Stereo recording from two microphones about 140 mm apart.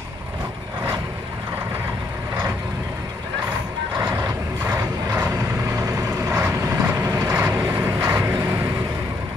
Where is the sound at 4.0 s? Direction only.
25° right (ahead or behind).